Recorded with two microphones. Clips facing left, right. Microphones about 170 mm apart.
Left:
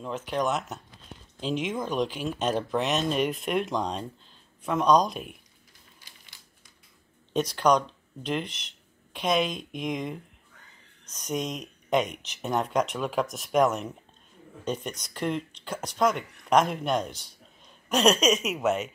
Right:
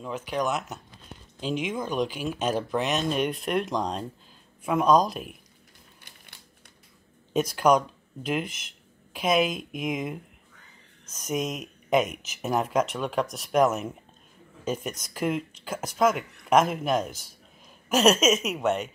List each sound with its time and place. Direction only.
0.0 s speech: centre (ahead or behind)
6.0 s crumpling: 60° right (ahead or behind)
7.3 s speech: 5° right (ahead or behind)